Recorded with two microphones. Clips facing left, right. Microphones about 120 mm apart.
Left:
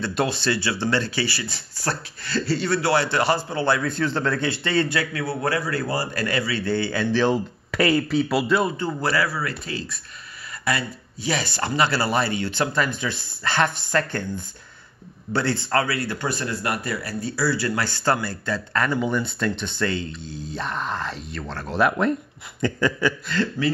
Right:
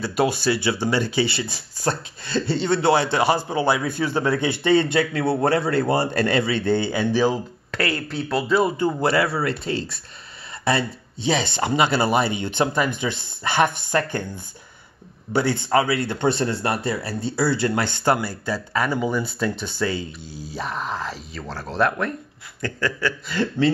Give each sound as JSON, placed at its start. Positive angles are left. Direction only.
{"t": 0.0, "sound": "a man's voice", "side_deg": -10}
{"t": 7.7, "sound": "speech", "side_deg": 15}
{"t": 8.7, "sound": "a man's voice", "side_deg": -20}
{"t": 22.6, "sound": "speech", "side_deg": 15}
{"t": 23.2, "sound": "speech", "side_deg": -15}